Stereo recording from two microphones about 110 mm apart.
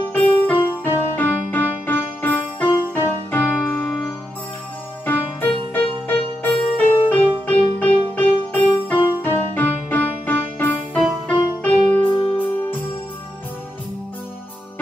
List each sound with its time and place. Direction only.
0.1 s music: 15° left (ahead or behind)
5.0 s music: 20° left (ahead or behind)